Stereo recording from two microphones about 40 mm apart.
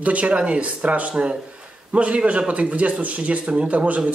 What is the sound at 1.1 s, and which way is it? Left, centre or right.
Speech, right.